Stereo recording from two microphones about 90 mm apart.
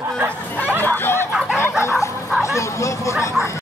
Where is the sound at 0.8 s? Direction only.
25° left (ahead or behind).